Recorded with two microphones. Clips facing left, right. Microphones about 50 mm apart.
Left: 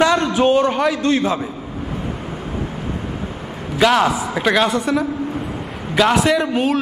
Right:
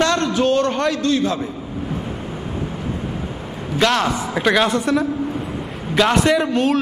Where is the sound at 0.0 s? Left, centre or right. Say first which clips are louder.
Left 3 dB; centre.